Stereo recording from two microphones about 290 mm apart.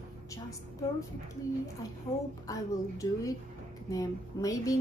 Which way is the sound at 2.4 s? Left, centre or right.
Centre.